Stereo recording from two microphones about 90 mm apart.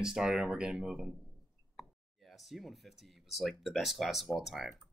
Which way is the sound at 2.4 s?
Centre (ahead or behind).